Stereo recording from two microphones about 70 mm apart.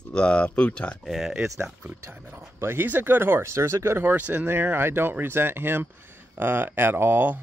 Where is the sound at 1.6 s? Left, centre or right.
Right.